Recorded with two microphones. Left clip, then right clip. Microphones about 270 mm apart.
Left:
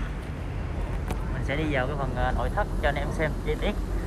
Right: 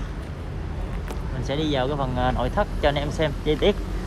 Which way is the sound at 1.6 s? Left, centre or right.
Centre.